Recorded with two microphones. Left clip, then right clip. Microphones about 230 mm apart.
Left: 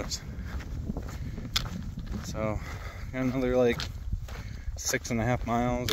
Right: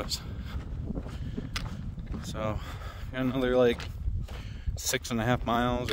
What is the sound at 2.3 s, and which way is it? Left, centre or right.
Speech, centre.